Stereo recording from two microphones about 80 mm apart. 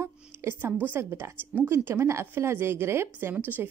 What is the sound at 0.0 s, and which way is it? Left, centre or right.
A woman's voice, right.